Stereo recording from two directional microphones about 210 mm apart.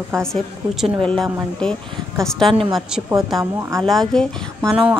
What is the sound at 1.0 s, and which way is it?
A woman's voice, 5° left (ahead or behind).